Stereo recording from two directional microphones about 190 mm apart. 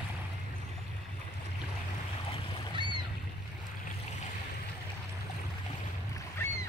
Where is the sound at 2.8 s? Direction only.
25° right (ahead or behind).